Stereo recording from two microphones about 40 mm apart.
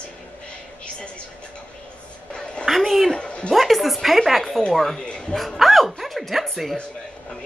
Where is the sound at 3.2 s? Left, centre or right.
Left.